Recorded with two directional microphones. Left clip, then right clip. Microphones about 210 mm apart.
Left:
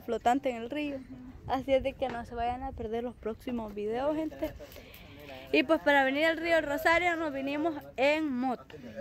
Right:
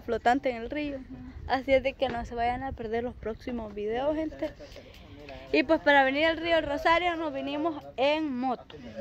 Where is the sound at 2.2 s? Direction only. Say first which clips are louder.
Right 4 dB; 40° right (ahead or behind).